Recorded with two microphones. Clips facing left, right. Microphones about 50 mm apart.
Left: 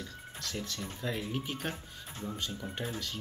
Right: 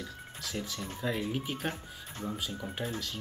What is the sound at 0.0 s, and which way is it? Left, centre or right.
Music, centre.